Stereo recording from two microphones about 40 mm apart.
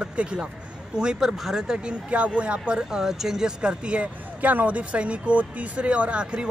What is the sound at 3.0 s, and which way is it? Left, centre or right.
Speech, centre.